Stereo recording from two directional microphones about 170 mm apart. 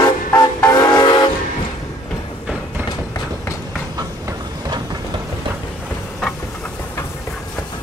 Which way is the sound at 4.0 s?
25° right (ahead or behind).